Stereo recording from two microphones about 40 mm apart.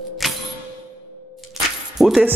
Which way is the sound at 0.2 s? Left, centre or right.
Centre.